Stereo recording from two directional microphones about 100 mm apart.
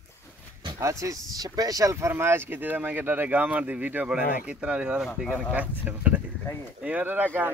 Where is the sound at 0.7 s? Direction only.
30° right (ahead or behind).